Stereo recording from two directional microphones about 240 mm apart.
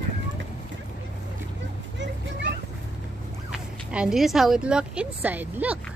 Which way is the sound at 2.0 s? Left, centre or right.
Right.